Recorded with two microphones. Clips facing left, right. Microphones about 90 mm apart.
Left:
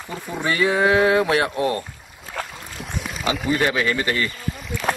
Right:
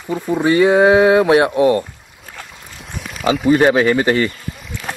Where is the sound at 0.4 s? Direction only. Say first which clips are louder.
Right 7 dB; 25° right (ahead or behind).